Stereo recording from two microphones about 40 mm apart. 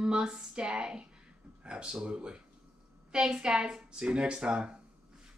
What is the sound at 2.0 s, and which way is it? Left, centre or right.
Speech, right.